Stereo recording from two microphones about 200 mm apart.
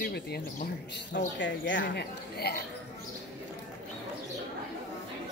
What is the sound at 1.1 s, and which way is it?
Speech, 70° left (ahead or behind).